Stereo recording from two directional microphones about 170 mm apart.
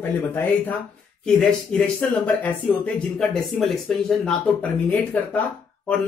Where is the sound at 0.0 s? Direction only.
10° left (ahead or behind).